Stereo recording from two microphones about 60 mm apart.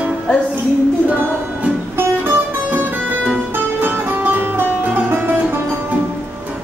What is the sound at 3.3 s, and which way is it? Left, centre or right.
Music, right.